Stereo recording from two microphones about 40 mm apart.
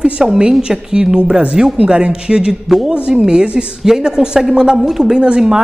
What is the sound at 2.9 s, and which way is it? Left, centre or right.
Speech, right.